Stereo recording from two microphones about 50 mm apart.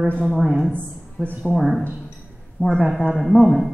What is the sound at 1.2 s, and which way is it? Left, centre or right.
Speech, left.